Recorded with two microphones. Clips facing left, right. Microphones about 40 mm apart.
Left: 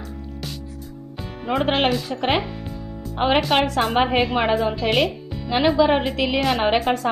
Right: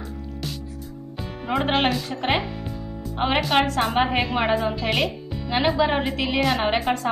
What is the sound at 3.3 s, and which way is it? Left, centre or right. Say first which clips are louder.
A woman's voice: even; centre.